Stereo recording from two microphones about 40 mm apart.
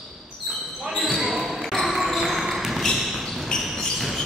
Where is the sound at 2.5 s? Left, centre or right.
Centre.